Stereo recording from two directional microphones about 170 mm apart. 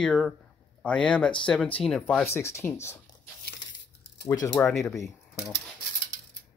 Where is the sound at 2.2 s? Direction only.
15° left (ahead or behind).